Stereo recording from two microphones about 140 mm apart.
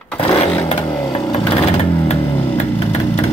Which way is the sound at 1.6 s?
45° left (ahead or behind).